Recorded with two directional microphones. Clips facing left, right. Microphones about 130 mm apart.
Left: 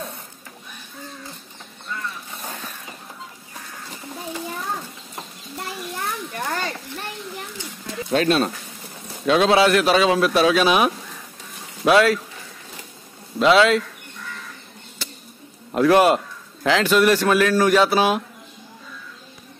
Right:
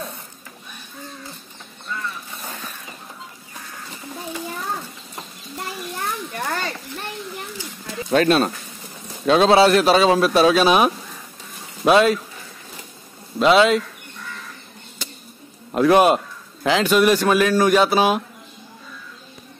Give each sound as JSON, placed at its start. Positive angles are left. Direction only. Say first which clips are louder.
{"t": 8.1, "sound": "speech", "louder": "right 2 dB", "side_deg": -45}
{"t": 9.2, "sound": "speech", "louder": "right 2 dB", "side_deg": -30}
{"t": 13.4, "sound": "a man's voice", "louder": "right 1 dB", "side_deg": -20}
{"t": 15.0, "sound": "a sound", "louder": "even", "side_deg": -15}
{"t": 15.7, "sound": "a man's voice", "louder": "right 1 dB", "side_deg": -20}